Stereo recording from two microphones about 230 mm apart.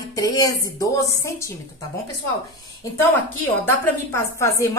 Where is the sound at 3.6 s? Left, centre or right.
Centre.